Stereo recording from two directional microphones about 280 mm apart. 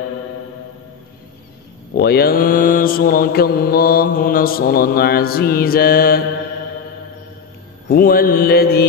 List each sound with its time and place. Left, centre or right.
2.0 s mantra: left
7.9 s mantra: left